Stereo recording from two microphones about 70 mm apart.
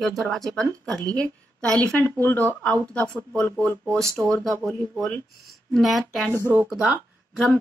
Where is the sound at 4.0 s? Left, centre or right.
Right.